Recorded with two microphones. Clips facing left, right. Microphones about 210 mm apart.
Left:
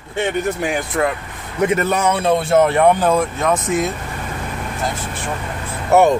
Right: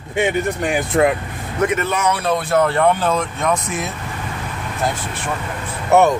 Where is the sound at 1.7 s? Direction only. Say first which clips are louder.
Left 3 dB; 35° left (ahead or behind).